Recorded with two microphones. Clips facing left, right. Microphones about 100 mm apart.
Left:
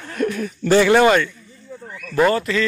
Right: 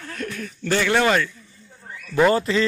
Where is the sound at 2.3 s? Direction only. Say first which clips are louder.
Even; 25° right (ahead or behind).